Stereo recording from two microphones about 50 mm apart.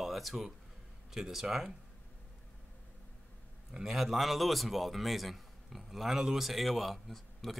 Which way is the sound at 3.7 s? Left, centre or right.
Centre.